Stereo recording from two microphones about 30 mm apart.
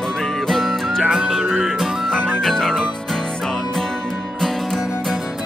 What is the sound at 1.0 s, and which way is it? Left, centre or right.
Music, centre.